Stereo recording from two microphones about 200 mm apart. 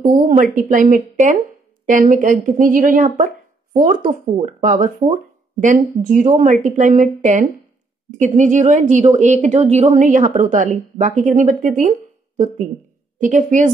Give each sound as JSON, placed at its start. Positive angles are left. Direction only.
{"t": 0.0, "sound": "a woman's voice", "side_deg": -40}
{"t": 13.2, "sound": "a woman's voice", "side_deg": -40}